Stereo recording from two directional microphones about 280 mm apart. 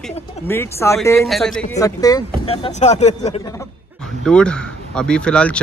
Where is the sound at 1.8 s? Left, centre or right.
Centre.